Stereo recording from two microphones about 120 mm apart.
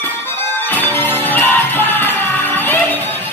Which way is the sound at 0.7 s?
15° left (ahead or behind).